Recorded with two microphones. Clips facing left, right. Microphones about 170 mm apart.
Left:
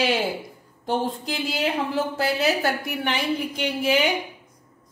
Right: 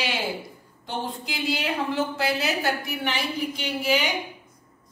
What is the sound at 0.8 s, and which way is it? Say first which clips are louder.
A woman's voice: left 6 dB; 40° left (ahead or behind).